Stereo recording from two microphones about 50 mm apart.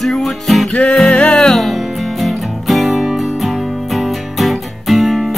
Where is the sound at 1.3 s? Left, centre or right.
Centre.